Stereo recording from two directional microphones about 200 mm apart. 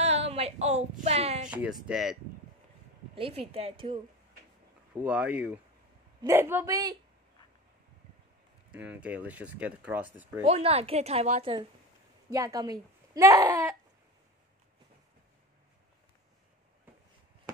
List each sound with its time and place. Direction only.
0.0 s a sound: 30° right (ahead or behind)
1.5 s speech: 5° right (ahead or behind)
3.2 s a woman's voice: 30° right (ahead or behind)
5.0 s speech: 5° right (ahead or behind)
8.7 s speech: 5° right (ahead or behind)
10.5 s a woman's voice: 30° right (ahead or behind)
12.3 s speech: 15° right (ahead or behind)